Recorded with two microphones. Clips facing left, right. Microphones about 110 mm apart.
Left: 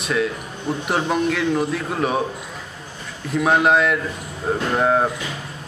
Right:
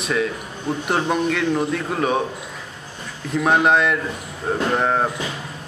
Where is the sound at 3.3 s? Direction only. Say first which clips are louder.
Even; centre (ahead or behind).